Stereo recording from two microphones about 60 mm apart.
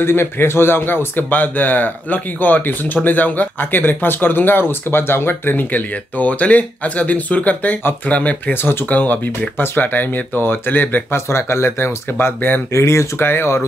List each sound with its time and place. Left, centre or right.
0.0 s speech: left
11.1 s speech: left
12.7 s speech: left
13.2 s speech: left